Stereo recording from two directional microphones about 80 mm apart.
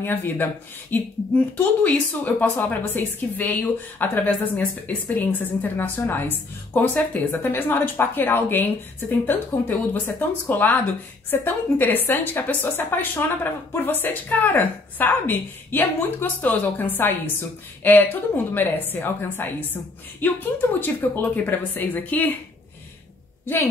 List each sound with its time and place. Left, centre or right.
0.0 s speech: left
23.4 s speech: left